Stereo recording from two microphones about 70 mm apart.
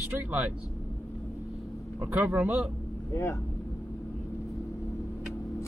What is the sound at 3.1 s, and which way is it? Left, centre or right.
Speech, left.